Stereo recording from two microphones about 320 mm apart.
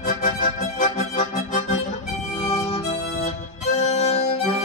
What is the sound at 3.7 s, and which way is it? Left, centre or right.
Music, left.